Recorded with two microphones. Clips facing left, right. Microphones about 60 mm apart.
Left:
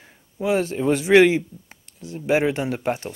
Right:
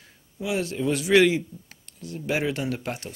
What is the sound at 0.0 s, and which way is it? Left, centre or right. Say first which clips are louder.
A man's voice: left 7 dB; left.